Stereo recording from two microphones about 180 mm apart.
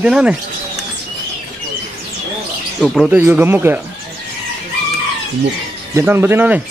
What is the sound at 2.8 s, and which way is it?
Speech, centre (ahead or behind).